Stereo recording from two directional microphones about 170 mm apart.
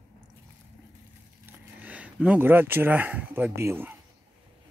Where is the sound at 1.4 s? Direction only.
10° right (ahead or behind).